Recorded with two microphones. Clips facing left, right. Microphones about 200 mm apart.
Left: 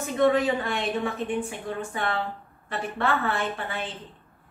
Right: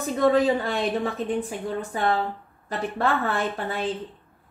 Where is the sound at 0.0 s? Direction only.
35° right (ahead or behind).